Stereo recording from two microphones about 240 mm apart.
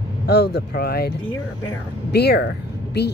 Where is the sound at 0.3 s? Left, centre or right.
Left.